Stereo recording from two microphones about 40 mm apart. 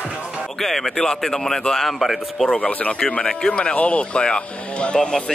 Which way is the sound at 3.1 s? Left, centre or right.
Left.